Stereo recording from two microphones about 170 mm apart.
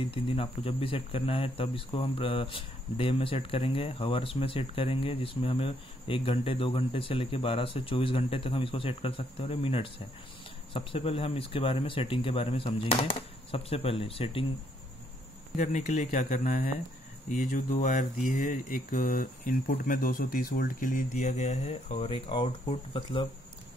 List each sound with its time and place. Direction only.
0.0 s speech: 35° left (ahead or behind)
15.5 s speech: 40° left (ahead or behind)